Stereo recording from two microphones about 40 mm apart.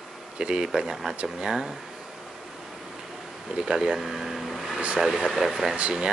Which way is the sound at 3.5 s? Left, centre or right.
Right.